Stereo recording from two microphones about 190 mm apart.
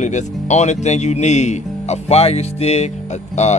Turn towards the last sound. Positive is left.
turn(degrees=35)  # may be behind; listen again after turning